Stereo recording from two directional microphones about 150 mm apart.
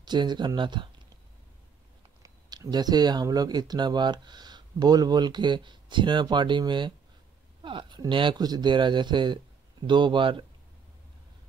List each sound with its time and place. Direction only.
0.0 s speech: 30° right (ahead or behind)
2.2 s speech: 25° right (ahead or behind)